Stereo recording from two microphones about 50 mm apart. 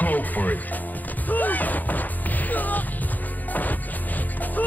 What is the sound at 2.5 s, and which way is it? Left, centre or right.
Music, left.